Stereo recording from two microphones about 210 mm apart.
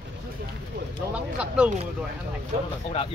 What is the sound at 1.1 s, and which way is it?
Speech, 5° right (ahead or behind).